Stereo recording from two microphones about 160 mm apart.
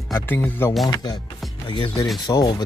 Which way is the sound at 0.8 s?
25° left (ahead or behind).